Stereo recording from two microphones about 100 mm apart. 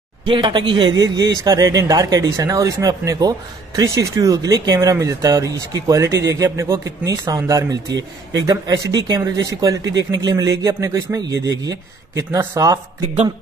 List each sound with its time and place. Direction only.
0.2 s speech: 50° right (ahead or behind)
4.7 s speech: 30° right (ahead or behind)